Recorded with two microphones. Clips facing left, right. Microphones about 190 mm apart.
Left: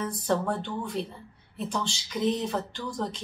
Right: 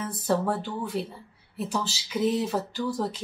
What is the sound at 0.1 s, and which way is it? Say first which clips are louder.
Speech: right 1 dB; 5° right (ahead or behind).